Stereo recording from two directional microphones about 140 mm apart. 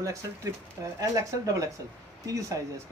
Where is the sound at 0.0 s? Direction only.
20° right (ahead or behind).